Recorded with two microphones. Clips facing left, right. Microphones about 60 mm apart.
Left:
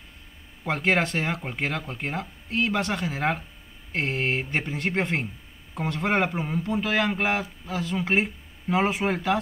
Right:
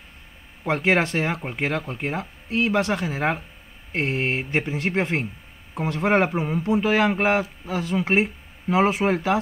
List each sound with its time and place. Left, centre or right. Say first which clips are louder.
0.7 s speech: right 3 dB; centre